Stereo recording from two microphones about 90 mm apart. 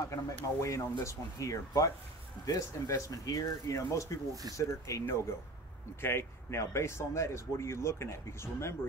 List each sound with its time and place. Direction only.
0.1 s speech: 35° left (ahead or behind)